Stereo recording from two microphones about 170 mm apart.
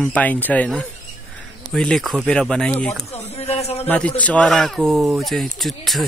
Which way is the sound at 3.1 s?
40° left (ahead or behind).